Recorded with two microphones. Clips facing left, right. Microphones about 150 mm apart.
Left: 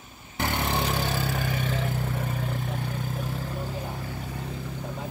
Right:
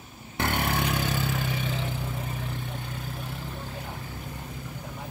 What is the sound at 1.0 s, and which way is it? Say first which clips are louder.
Vehicle: left 1 dB; 45° left (ahead or behind).